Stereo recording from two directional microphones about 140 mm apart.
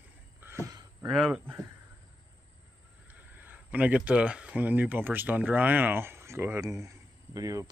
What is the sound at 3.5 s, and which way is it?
Speech, 10° right (ahead or behind).